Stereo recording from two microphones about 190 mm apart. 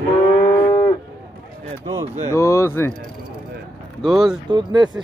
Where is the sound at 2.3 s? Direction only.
15° left (ahead or behind).